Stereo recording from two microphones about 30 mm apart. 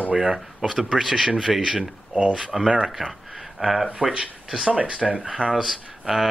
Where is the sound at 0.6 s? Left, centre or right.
Centre.